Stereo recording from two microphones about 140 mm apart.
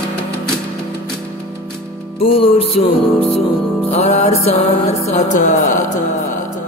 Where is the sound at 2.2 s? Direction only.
40° left (ahead or behind).